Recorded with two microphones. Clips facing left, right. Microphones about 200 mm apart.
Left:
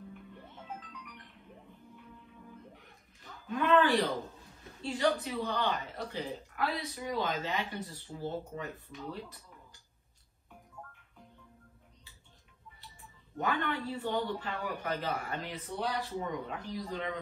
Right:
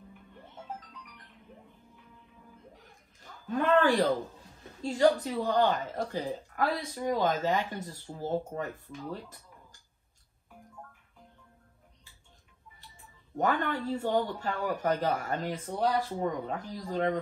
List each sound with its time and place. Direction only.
3.4 s speech: 45° right (ahead or behind)
13.4 s speech: 45° right (ahead or behind)